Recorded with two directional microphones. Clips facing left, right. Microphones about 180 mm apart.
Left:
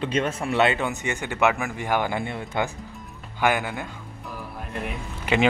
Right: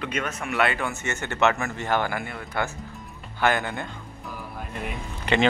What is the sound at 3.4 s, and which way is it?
Speech, 10° left (ahead or behind).